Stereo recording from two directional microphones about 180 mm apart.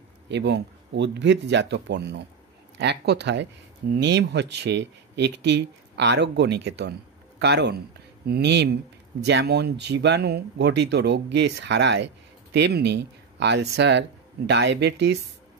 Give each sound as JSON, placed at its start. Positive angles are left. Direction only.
{"t": 0.3, "sound": "speech", "side_deg": -75}